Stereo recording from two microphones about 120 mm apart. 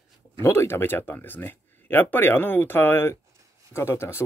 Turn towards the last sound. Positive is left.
turn(degrees=20)  # may be behind; listen again after turning